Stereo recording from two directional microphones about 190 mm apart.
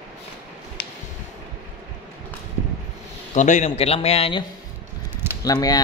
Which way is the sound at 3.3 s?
40° left (ahead or behind).